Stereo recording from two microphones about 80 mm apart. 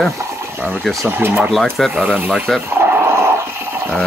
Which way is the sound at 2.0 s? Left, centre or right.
Centre.